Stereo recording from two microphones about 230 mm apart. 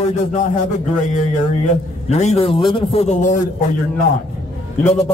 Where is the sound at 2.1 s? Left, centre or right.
Left.